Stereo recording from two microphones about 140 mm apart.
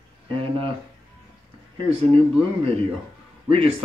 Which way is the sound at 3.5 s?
40° right (ahead or behind).